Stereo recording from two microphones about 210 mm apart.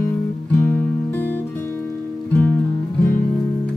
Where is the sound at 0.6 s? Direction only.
10° left (ahead or behind).